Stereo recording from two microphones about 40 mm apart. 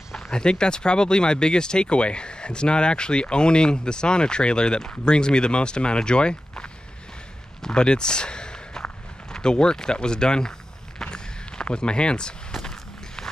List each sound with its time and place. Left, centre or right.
0.1 s speech: centre
11.0 s walk: centre
11.6 s speech: left
12.6 s walk: centre